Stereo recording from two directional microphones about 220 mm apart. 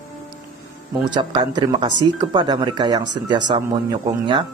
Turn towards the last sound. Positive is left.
turn(degrees=-20)  # may be behind; listen again after turning